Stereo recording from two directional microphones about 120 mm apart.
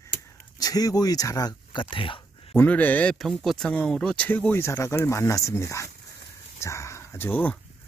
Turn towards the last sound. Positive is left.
turn(degrees=15)  # may be behind; listen again after turning